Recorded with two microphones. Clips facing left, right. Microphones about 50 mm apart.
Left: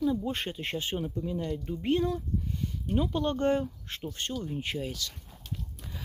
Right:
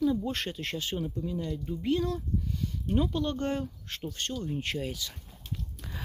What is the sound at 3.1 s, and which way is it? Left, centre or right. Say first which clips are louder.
Speech: left 3 dB; left.